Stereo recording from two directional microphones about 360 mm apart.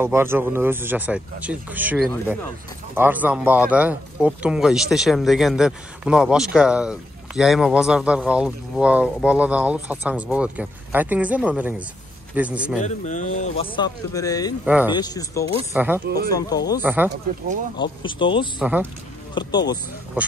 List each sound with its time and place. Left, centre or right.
0.0 s speech: centre
12.8 s speech: centre
14.6 s speech: centre
15.0 s speech: centre
15.7 s speech: centre
16.3 s speech: centre
16.8 s speech: centre
17.7 s speech: centre
18.6 s speech: centre
19.3 s speech: centre